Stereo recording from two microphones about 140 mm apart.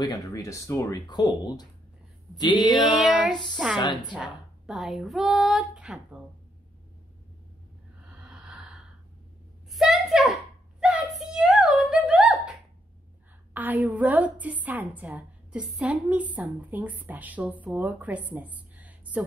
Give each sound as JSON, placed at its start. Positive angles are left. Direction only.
{"t": 0.0, "sound": "speech", "side_deg": 25}
{"t": 2.7, "sound": "female singing", "side_deg": 0}
{"t": 3.7, "sound": "a woman's voice", "side_deg": 35}
{"t": 4.1, "sound": "a woman's voice", "side_deg": -5}
{"t": 8.1, "sound": "gasp", "side_deg": -5}
{"t": 9.7, "sound": "a sound", "side_deg": 0}
{"t": 13.5, "sound": "a woman's voice", "side_deg": -10}